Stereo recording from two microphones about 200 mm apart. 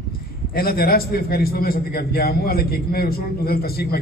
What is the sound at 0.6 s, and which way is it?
A man's voice, 50° left (ahead or behind).